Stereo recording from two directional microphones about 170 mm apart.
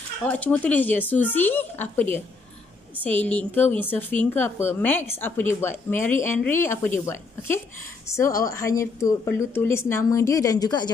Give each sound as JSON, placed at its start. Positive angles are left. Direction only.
{"t": 0.2, "sound": "a woman's voice", "side_deg": 10}